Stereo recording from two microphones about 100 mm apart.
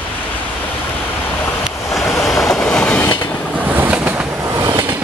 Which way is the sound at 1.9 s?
Centre (ahead or behind).